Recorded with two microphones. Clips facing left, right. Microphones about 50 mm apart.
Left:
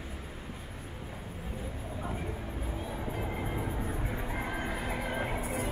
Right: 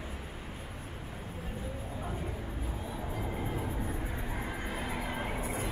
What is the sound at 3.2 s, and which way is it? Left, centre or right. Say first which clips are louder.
Music: right 1 dB; left.